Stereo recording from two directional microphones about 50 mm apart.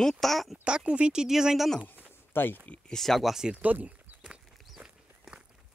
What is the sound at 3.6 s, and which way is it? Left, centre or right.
Speech, right.